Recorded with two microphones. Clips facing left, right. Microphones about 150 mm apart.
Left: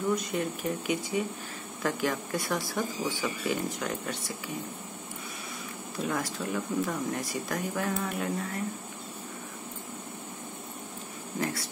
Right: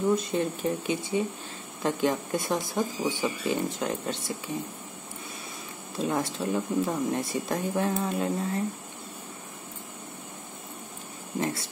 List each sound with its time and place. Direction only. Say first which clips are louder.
0.1 s speech: right 3 dB; 25° right (ahead or behind)
5.9 s speech: right 4 dB; 25° right (ahead or behind)
11.3 s speech: right 3 dB; 25° right (ahead or behind)